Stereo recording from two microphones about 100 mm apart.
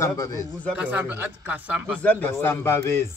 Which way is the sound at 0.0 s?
30° left (ahead or behind).